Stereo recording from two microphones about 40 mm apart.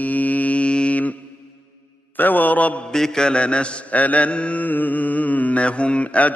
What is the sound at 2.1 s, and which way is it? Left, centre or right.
Mantra, left.